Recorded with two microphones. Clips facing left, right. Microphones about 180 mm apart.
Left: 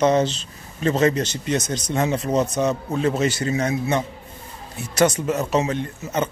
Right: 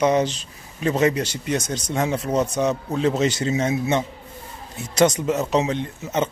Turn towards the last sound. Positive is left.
turn(degrees=-20)  # may be behind; listen again after turning